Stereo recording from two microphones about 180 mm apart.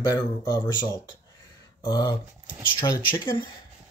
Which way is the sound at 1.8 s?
25° left (ahead or behind).